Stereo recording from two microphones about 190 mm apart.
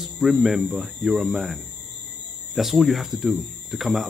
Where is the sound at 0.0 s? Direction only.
Centre (ahead or behind).